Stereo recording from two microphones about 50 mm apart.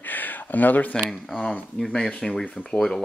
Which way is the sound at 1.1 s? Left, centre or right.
Centre.